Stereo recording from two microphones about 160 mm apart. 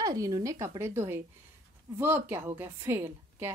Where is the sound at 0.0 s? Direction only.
20° right (ahead or behind).